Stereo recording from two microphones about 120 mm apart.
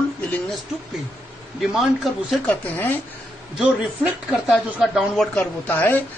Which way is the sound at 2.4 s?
15° left (ahead or behind).